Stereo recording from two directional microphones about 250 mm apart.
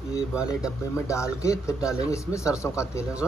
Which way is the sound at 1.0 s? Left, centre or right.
Centre.